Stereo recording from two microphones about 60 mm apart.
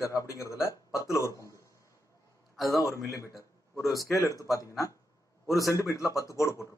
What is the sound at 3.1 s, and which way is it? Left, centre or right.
Speech, left.